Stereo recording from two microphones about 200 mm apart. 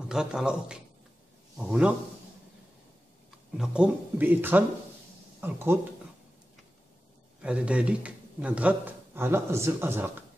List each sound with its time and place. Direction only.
0.1 s a man's voice: 5° right (ahead or behind)
3.5 s a man's voice: 5° right (ahead or behind)
7.4 s a man's voice: 5° right (ahead or behind)